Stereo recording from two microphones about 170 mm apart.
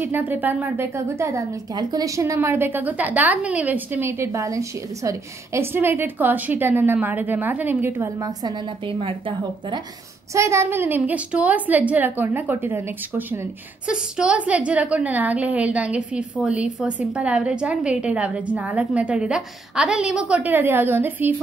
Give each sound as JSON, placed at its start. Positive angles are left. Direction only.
{"t": 0.0, "sound": "a woman's voice", "side_deg": -10}
{"t": 10.3, "sound": "a woman's voice", "side_deg": -15}